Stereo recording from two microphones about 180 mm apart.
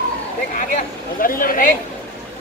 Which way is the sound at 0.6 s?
50° left (ahead or behind).